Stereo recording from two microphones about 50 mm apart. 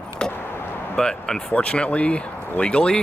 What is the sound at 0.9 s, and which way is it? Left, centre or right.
Speech, centre.